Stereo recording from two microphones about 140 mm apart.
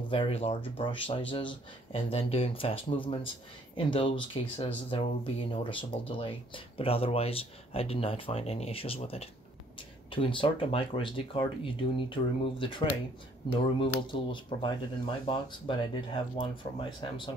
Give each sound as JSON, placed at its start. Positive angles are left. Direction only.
{"t": 0.1, "sound": "speech", "side_deg": 40}